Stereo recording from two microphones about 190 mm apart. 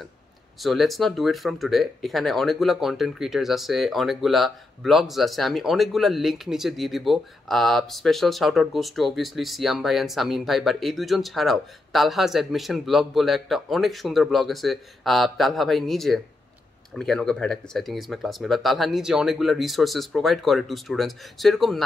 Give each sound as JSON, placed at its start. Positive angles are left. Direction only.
{"t": 0.6, "sound": "speech", "side_deg": 0}